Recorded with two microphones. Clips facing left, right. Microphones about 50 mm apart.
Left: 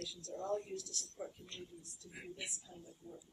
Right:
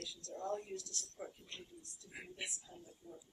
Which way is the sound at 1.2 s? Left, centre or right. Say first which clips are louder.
Left 2 dB; centre.